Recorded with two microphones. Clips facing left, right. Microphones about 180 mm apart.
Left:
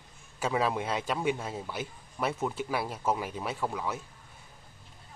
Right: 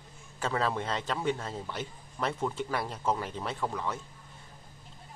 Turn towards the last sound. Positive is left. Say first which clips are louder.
# even
turn(degrees=5)  # may be behind; listen again after turning